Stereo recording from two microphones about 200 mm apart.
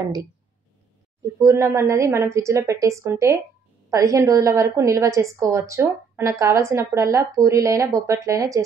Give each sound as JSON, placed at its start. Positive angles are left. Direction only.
{"t": 0.0, "sound": "speech", "side_deg": -20}
{"t": 1.4, "sound": "a woman's voice", "side_deg": -15}